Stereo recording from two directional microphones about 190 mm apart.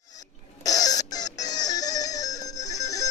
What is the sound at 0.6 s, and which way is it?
Music, 20° left (ahead or behind).